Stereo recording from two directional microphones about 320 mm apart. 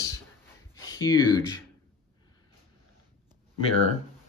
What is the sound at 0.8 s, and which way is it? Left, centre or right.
Speech, centre.